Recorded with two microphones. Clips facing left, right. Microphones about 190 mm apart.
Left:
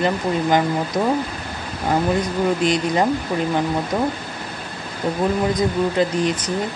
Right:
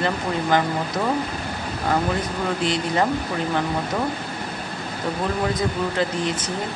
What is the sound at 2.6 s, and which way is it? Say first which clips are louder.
Speech: left 3 dB; 15° left (ahead or behind).